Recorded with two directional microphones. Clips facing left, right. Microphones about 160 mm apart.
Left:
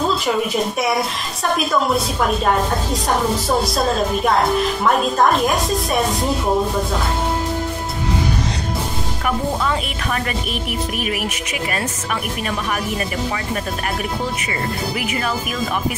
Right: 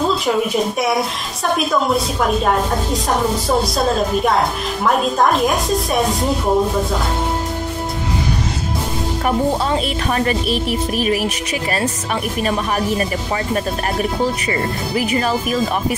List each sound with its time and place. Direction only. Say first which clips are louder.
0.0 s a woman's voice: right 2 dB; centre (ahead or behind)
9.2 s speech: right 3 dB; 35° right (ahead or behind)
14.5 s speech: right 3 dB; 35° right (ahead or behind)